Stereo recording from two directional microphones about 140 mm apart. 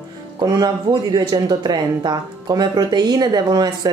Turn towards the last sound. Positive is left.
turn(degrees=-30)  # may be behind; listen again after turning